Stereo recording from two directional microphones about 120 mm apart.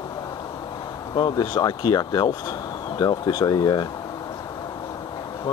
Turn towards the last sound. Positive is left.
turn(degrees=35)  # may be behind; listen again after turning